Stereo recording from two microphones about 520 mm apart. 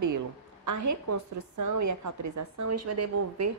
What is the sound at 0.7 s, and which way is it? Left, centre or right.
A woman's voice, right.